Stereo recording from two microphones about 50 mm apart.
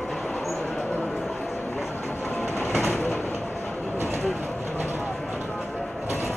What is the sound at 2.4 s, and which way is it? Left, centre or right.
Train, left.